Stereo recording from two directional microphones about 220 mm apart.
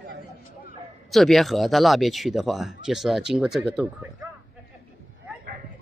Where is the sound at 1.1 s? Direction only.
Centre (ahead or behind).